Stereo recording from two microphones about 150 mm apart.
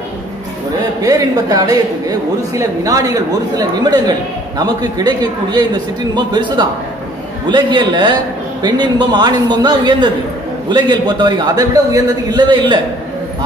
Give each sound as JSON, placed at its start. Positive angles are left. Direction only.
{"t": 1.0, "sound": "a man's voice", "side_deg": -25}